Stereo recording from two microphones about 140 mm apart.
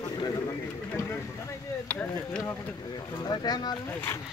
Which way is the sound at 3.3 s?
30° left (ahead or behind).